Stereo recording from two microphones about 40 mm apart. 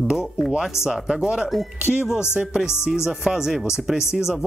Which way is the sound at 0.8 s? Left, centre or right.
Centre.